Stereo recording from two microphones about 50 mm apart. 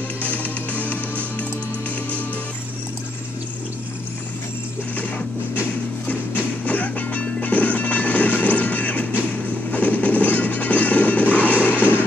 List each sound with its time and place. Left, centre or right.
0.2 s music: left
6.0 s music: left
9.7 s a sound: left